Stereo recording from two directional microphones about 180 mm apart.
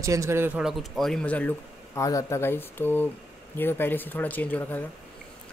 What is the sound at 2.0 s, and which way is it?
Speech, 15° left (ahead or behind).